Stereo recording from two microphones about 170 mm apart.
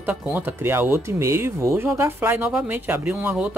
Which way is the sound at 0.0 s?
10° right (ahead or behind).